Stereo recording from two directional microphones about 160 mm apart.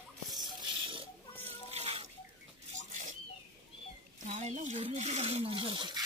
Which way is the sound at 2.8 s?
50° right (ahead or behind).